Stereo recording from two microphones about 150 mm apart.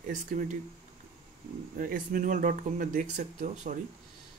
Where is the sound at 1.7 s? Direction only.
65° right (ahead or behind).